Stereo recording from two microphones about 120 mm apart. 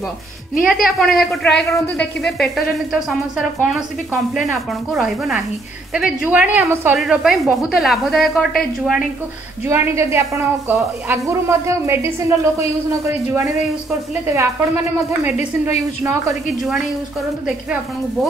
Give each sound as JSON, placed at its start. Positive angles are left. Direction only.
{"t": 0.7, "sound": "a woman's voice", "side_deg": 0}
{"t": 7.0, "sound": "a woman's voice", "side_deg": 0}
{"t": 9.7, "sound": "a woman's voice", "side_deg": -25}